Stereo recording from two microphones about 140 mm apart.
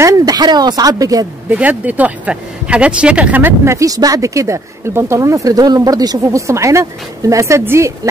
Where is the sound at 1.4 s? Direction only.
10° right (ahead or behind).